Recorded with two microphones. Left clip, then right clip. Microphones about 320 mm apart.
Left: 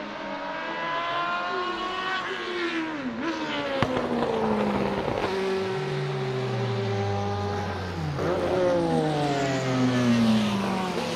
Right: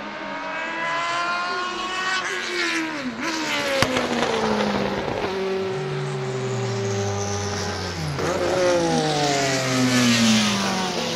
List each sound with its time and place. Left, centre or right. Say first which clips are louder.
3.7 s vehicle: right 4 dB; right; by 4.8 s centre
8.6 s vehicle: right 4 dB; right
9.3 s vehicle: right 5 dB; right